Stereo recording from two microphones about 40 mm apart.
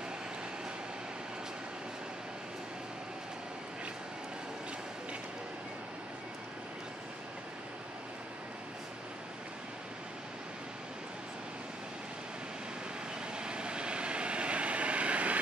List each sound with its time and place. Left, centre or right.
13.4 s vehicle: right